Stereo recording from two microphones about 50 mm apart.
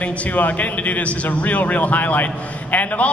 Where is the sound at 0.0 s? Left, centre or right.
Left.